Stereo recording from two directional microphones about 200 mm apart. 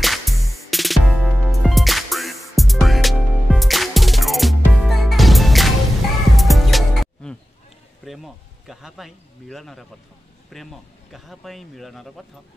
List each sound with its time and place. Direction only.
0.0 s music: centre (ahead or behind)
8.0 s a man's voice: centre (ahead or behind)